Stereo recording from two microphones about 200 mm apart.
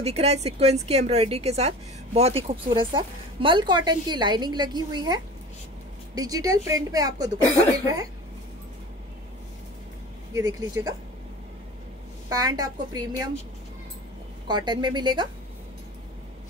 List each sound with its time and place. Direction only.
0.0 s a woman's voice: 30° right (ahead or behind); by 8.1 s 15° right (ahead or behind)
10.3 s a woman's voice: 15° right (ahead or behind)
12.3 s a woman's voice: 20° right (ahead or behind)
14.5 s a woman's voice: 20° right (ahead or behind)